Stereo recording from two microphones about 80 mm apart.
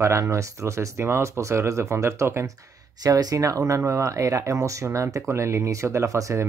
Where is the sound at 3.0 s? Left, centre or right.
Right.